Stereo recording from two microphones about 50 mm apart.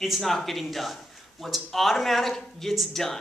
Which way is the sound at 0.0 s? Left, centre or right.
Centre.